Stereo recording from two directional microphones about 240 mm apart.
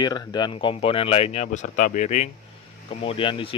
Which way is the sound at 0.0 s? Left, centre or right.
Centre.